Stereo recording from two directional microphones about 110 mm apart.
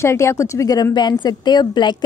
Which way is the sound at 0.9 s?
40° left (ahead or behind).